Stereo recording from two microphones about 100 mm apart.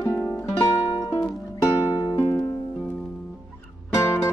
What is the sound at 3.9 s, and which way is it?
Music, 25° left (ahead or behind).